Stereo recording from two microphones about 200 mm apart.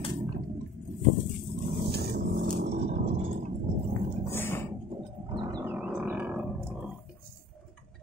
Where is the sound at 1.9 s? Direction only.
55° right (ahead or behind).